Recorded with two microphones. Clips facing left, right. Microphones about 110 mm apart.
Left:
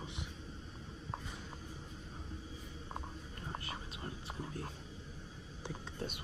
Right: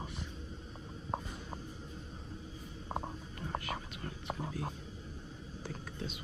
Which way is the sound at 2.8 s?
40° right (ahead or behind).